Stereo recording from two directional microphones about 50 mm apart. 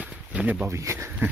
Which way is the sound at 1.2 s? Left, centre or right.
Right.